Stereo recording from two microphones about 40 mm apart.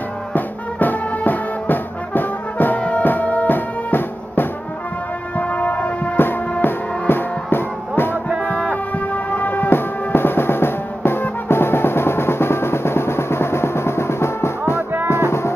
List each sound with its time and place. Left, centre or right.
0.3 s music: left
5.6 s music: left
6.1 s music: left
9.3 s music: left
9.7 s music: left
11.1 s drum: left
15.2 s music: left